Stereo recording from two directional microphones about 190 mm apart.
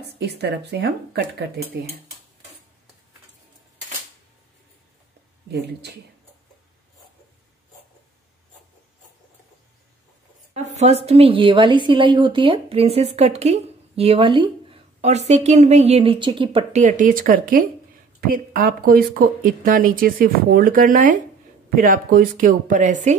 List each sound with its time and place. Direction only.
0.0 s speech: 60° right (ahead or behind)
5.5 s speech: 60° right (ahead or behind)
10.5 s speech: 35° right (ahead or behind)
16.8 s speech: 45° right (ahead or behind)